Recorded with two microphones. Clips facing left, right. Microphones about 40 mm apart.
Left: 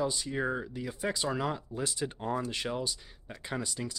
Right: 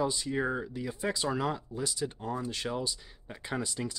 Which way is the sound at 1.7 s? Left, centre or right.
Left.